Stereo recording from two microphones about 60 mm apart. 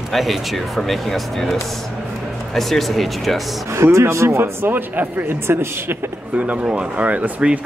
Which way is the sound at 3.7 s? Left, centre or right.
Right.